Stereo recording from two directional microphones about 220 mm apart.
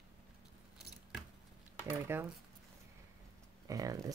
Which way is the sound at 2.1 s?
10° right (ahead or behind).